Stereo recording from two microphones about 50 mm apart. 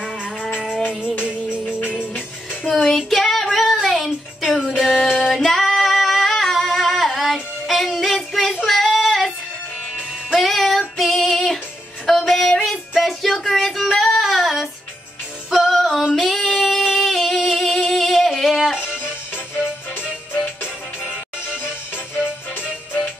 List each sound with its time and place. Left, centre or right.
1.7 s music: left
2.7 s female singing: centre
3.8 s a sound: centre
4.6 s music: centre
5.1 s singing: centre
7.6 s child singing: centre
10.3 s music: centre
12.1 s a sound: centre
12.9 s female singing: centre
15.5 s music: centre
16.2 s singing: centre
19.3 s music: left
21.9 s music: left